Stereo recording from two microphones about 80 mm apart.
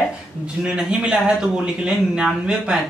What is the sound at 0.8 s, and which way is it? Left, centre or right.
Speech, centre.